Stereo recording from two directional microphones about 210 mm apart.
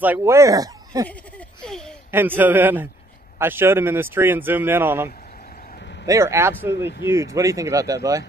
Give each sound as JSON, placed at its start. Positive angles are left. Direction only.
{"t": 0.0, "sound": "speech", "side_deg": -10}
{"t": 1.6, "sound": "a sound", "side_deg": 5}
{"t": 2.0, "sound": "speech", "side_deg": -10}